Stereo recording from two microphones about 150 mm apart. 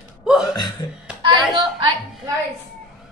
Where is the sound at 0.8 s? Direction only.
20° left (ahead or behind).